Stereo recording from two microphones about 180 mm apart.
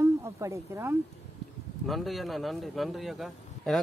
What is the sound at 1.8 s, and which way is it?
Speech, centre (ahead or behind).